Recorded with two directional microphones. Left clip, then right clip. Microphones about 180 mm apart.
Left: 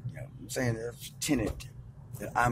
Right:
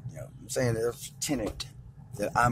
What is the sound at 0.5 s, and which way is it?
Speech, 20° right (ahead or behind).